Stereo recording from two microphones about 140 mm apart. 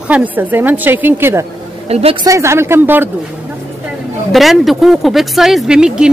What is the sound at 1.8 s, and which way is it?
Speech, 45° right (ahead or behind).